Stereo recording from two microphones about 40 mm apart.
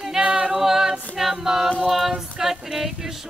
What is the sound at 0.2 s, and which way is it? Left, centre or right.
A capella, right.